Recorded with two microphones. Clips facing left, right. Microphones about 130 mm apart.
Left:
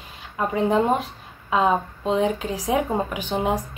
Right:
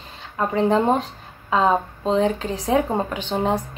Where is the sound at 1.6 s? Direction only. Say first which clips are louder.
Right 1 dB; 35° right (ahead or behind).